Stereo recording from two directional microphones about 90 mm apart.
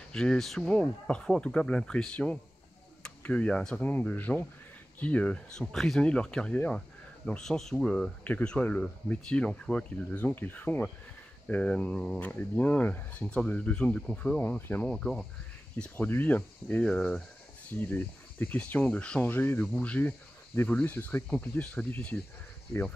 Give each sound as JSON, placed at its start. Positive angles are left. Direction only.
{"t": 0.1, "sound": "speech", "side_deg": 10}
{"t": 8.2, "sound": "speech", "side_deg": 15}
{"t": 15.8, "sound": "speech", "side_deg": 20}
{"t": 16.8, "sound": "speech", "side_deg": 10}
{"t": 17.7, "sound": "speech", "side_deg": 20}